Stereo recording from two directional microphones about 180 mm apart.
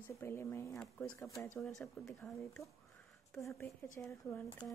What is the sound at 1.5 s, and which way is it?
Speech, centre (ahead or behind).